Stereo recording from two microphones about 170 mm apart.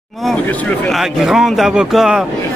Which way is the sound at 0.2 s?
5° left (ahead or behind).